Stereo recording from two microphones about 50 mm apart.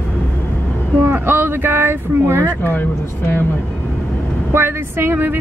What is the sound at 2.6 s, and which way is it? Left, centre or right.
Speech, left.